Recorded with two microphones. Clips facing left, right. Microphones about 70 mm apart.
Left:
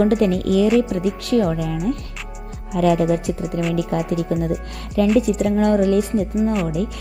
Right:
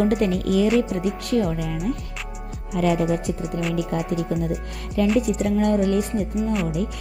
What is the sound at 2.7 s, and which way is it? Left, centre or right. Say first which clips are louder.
Speech: left 4 dB; left.